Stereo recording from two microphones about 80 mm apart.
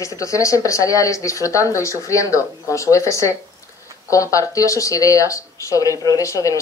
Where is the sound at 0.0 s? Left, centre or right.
Left.